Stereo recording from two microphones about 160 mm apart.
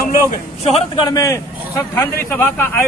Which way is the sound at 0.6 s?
35° left (ahead or behind).